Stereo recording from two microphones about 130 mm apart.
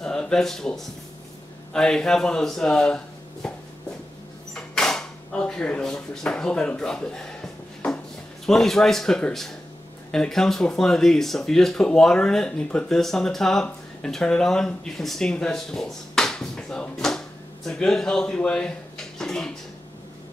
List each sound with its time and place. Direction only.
0.0 s speech: 5° left (ahead or behind)
3.4 s shuffle: 5° left (ahead or behind)
4.6 s drawer open or close: 5° left (ahead or behind)
8.5 s speech: 5° left (ahead or behind)
19.1 s a sound: 5° left (ahead or behind)